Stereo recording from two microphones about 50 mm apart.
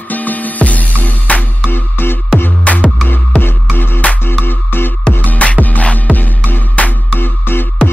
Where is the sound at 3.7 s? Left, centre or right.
Left.